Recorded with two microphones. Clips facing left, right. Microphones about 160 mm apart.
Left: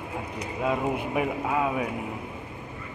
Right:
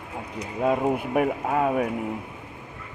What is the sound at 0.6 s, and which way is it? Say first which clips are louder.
Speech: right 4 dB; 50° right (ahead or behind).